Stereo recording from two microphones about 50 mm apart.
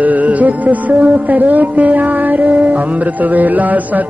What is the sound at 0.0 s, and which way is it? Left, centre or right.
Music, right.